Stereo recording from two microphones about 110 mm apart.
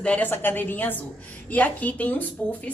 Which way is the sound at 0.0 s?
15° left (ahead or behind).